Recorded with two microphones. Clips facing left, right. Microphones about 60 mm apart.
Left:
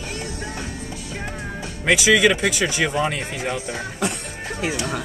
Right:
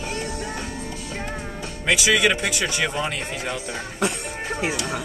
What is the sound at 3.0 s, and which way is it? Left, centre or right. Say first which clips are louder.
Speech: left 3 dB; centre.